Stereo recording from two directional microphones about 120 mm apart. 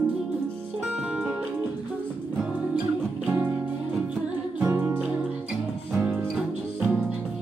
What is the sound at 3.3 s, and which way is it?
Music, 15° right (ahead or behind).